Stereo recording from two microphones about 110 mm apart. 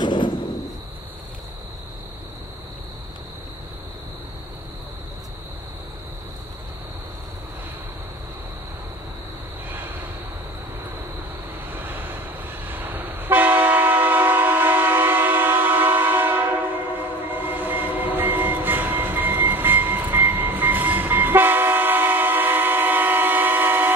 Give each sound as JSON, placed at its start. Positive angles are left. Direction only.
{"t": 0.0, "sound": "a sound", "side_deg": 45}
{"t": 11.7, "sound": "vehicle", "side_deg": -20}
{"t": 12.6, "sound": "train", "side_deg": -20}